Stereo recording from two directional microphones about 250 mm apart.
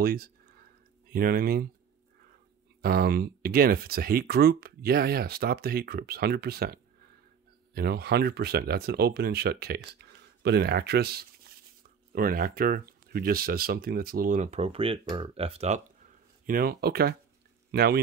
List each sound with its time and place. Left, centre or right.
0.0 s a sound: right
1.1 s speech: right
2.8 s speech: right
16.4 s speech: right